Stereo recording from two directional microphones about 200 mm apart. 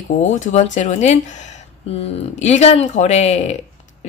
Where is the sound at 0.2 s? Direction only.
35° left (ahead or behind).